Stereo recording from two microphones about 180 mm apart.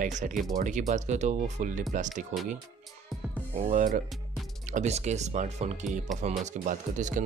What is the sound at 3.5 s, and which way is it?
Speech, 45° right (ahead or behind).